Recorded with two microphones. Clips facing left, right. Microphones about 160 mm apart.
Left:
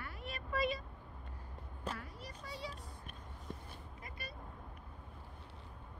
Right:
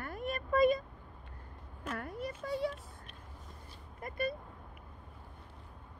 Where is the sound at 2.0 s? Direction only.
55° right (ahead or behind).